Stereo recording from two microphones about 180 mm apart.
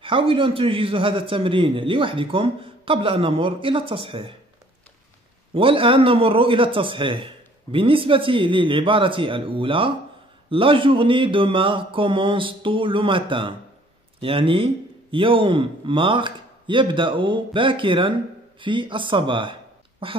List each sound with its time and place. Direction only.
0.0 s a man's voice: 30° right (ahead or behind)
5.5 s a man's voice: 30° right (ahead or behind)